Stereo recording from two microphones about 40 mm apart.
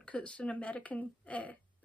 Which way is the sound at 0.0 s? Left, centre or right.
Left.